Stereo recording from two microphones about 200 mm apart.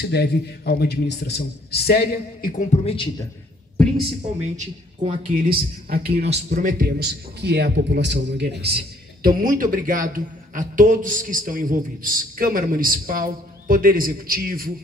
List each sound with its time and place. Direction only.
0.0 s speech: 55° left (ahead or behind)
2.7 s speech: 30° left (ahead or behind)
3.7 s a sound: 5° left (ahead or behind)
4.6 s a man's voice: 40° right (ahead or behind)
6.3 s a man's voice: 40° right (ahead or behind)